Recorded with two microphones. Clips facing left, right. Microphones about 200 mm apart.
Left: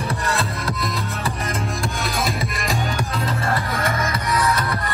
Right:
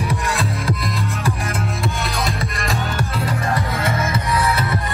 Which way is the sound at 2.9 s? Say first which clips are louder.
Right 1 dB; 15° right (ahead or behind).